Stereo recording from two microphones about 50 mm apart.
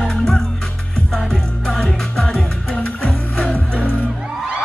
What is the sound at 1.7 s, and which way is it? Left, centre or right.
Music, centre.